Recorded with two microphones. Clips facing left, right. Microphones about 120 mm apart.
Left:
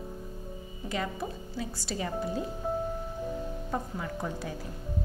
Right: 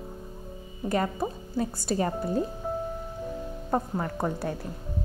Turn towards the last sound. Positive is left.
turn(degrees=-55)  # may be behind; listen again after turning